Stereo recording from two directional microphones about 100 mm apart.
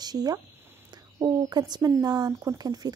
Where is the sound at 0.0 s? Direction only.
40° right (ahead or behind).